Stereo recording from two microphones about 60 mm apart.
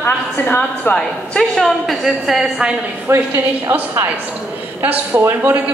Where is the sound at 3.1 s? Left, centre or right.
Right.